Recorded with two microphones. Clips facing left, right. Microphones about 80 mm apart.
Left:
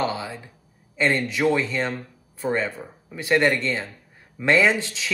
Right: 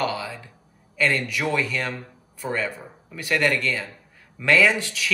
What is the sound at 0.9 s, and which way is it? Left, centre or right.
Speech, left.